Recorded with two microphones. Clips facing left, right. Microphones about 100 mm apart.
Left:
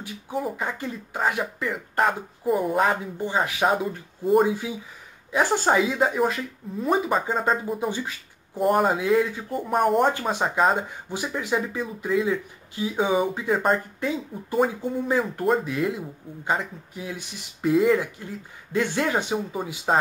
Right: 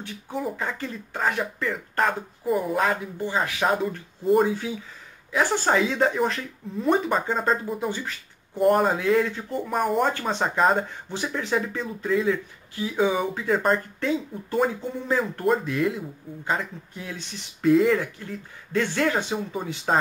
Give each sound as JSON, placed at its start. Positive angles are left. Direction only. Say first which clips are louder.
{"t": 0.0, "sound": "speech", "louder": "left 1 dB", "side_deg": 10}
{"t": 2.8, "sound": "speech", "louder": "left 2 dB", "side_deg": 20}
{"t": 5.3, "sound": "speech", "louder": "left 1 dB", "side_deg": 15}
{"t": 8.9, "sound": "speech", "louder": "even", "side_deg": 15}
{"t": 19.5, "sound": "speech", "louder": "even", "side_deg": 5}